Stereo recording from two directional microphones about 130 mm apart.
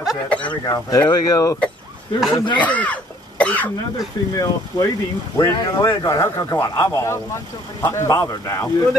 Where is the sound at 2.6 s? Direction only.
10° left (ahead or behind).